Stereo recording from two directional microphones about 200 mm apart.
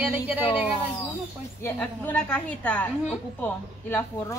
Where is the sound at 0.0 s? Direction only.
10° right (ahead or behind).